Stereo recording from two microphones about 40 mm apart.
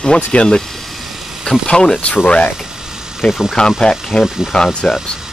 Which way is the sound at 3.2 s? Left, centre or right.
Centre.